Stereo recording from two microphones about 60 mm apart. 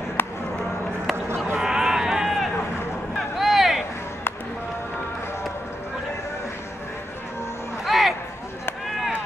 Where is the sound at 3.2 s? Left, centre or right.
Centre.